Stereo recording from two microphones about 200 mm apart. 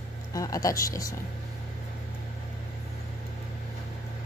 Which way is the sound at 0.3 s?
15° left (ahead or behind).